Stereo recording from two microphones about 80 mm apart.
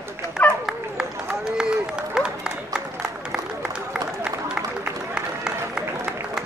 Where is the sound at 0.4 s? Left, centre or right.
Left.